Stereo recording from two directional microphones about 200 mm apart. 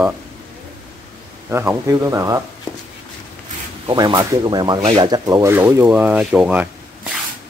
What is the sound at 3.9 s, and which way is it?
Speech, 20° right (ahead or behind).